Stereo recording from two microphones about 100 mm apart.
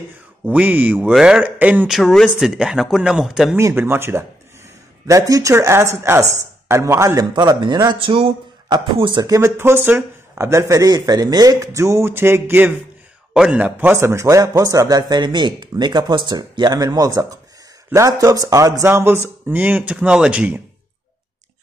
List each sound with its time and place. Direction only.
0.5 s speech: 15° right (ahead or behind)
1.9 s speech: centre (ahead or behind)
3.5 s speech: 25° right (ahead or behind)
7.2 s speech: 45° right (ahead or behind)
9.2 s speech: 30° right (ahead or behind)
13.3 s speech: 10° right (ahead or behind)
13.9 s speech: 30° right (ahead or behind); by 20.6 s 10° right (ahead or behind)